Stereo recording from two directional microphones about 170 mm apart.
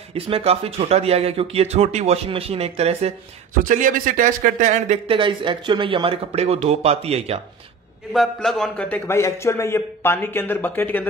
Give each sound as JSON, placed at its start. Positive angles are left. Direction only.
{"t": 0.1, "sound": "speech", "side_deg": -35}
{"t": 3.6, "sound": "speech", "side_deg": -50}
{"t": 5.0, "sound": "speech", "side_deg": -30}
{"t": 8.1, "sound": "a man's voice", "side_deg": 0}